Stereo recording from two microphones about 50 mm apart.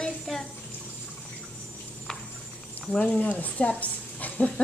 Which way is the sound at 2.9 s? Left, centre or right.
Left.